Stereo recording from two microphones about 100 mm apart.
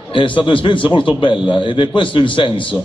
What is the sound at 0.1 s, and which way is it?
A man's voice, 55° left (ahead or behind).